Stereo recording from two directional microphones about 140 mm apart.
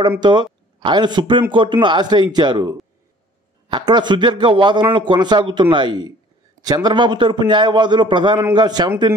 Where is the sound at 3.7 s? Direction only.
35° right (ahead or behind).